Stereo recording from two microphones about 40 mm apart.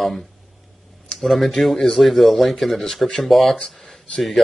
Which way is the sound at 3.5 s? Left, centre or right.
Left.